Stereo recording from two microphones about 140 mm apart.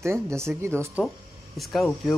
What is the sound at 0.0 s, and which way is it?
Speech, 20° right (ahead or behind).